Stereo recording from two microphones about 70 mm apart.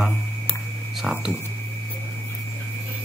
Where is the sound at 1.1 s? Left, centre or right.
Centre.